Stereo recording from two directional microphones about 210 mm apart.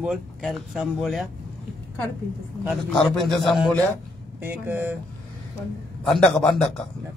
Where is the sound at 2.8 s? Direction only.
Centre (ahead or behind).